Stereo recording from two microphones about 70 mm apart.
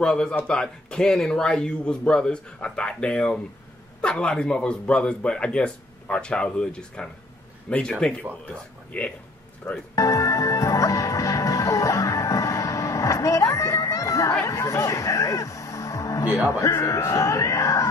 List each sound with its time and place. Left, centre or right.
0.0 s a man's voice: centre
8.9 s a man's voice: centre
9.9 s music: left
16.4 s speech: left